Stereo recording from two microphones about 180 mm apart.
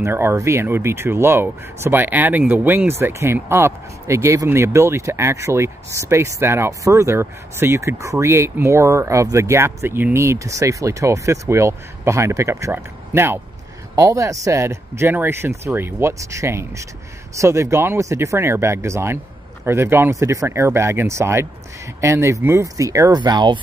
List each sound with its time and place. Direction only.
0.0 s speech: 15° right (ahead or behind)